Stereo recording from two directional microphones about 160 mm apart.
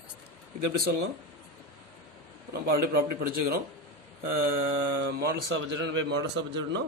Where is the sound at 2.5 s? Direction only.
70° right (ahead or behind).